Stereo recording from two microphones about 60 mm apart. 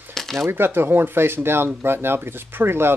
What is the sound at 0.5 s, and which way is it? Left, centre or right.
Speech, right.